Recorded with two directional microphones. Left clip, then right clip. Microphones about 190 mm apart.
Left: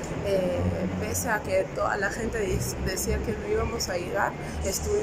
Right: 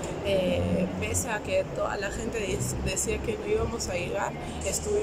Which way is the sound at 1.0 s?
Centre (ahead or behind).